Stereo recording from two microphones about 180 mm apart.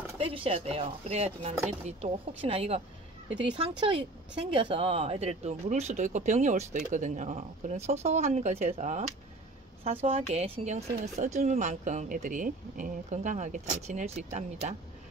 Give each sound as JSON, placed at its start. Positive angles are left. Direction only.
{"t": 0.2, "sound": "speech", "side_deg": -30}
{"t": 10.0, "sound": "speech", "side_deg": -30}